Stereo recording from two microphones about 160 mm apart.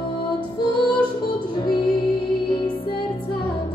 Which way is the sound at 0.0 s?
30° left (ahead or behind).